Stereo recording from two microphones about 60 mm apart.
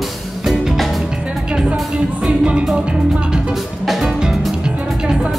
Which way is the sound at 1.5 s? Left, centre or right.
Centre.